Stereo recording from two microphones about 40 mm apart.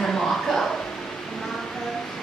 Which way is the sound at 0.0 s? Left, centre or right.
Centre.